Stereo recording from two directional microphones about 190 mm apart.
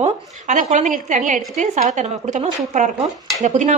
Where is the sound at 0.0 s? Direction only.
40° right (ahead or behind).